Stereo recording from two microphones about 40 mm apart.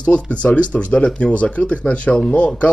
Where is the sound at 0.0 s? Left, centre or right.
Left.